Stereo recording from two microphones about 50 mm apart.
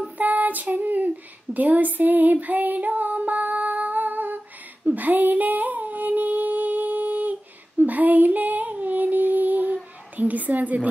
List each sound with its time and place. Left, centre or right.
0.2 s child singing: right
2.4 s female singing: right
4.8 s humming: right
7.8 s female singing: right
10.1 s a woman's voice: right